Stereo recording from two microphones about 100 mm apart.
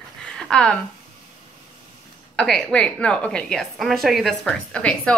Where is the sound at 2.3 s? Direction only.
5° left (ahead or behind).